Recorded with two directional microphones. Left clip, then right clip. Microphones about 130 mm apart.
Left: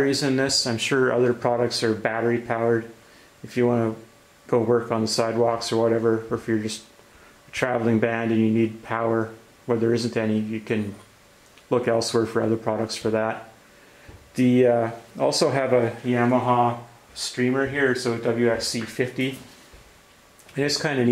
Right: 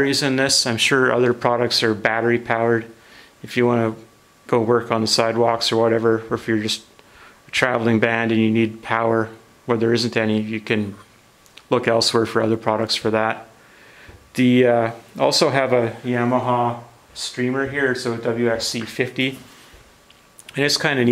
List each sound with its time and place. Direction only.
0.0 s speech: 40° right (ahead or behind)
16.1 s speech: 15° right (ahead or behind)
20.5 s speech: 40° right (ahead or behind)